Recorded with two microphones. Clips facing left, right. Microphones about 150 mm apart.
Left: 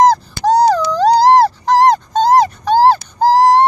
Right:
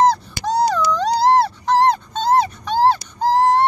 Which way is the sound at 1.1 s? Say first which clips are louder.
Left 5 dB; 90° left.